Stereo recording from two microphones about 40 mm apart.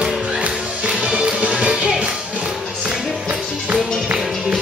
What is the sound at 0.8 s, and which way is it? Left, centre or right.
Music, right.